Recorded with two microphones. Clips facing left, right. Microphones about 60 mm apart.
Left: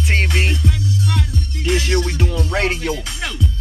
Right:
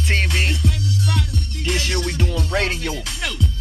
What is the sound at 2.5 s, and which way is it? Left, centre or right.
Speech, centre.